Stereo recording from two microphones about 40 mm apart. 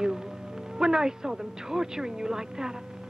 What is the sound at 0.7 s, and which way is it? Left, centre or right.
Speech, centre.